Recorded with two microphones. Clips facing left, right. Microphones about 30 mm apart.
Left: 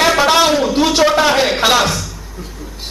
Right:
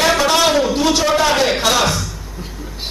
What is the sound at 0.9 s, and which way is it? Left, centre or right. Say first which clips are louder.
Speech: left 5 dB; centre.